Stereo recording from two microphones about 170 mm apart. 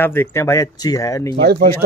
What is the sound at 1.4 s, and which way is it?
Speech, 70° right (ahead or behind).